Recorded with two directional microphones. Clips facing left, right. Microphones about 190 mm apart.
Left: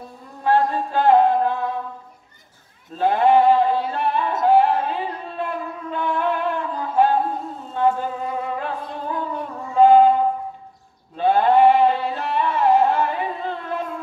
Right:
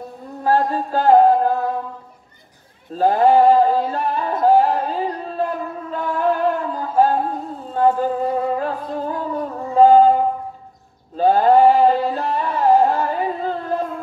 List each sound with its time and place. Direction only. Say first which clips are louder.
0.4 s music: right 1 dB; 40° right (ahead or behind)
2.9 s music: right 2 dB; 40° right (ahead or behind)
11.1 s music: right 3 dB; 40° right (ahead or behind)